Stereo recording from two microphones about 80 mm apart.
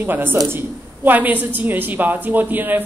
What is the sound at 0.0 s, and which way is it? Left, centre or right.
A woman's voice, right.